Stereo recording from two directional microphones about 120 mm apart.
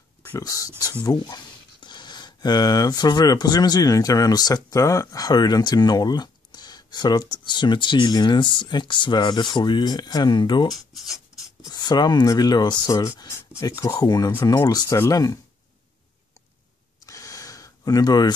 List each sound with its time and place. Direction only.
0.4 s speech: 30° left (ahead or behind)
10.7 s writing: centre (ahead or behind)
11.6 s speech: 35° left (ahead or behind)
17.0 s a sound: 30° left (ahead or behind)